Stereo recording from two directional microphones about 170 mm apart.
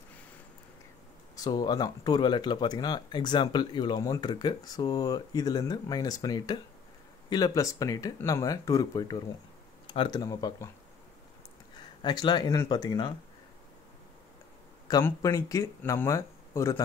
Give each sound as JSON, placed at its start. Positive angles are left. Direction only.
{"t": 1.3, "sound": "speech", "side_deg": 20}
{"t": 12.0, "sound": "speech", "side_deg": 25}
{"t": 14.9, "sound": "speech", "side_deg": 20}